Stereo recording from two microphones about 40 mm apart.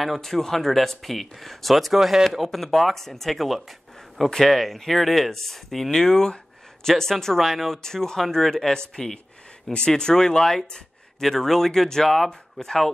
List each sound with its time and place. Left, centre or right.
0.0 s speech: centre
7.3 s speech: centre
7.8 s speech: centre